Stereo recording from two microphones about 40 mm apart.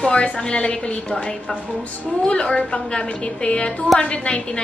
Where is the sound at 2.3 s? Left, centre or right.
Left.